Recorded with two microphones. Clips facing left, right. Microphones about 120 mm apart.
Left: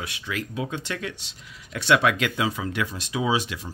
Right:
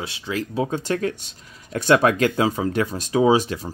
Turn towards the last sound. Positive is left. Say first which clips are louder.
# right 8 dB
turn(degrees=-45)  # may be behind; listen again after turning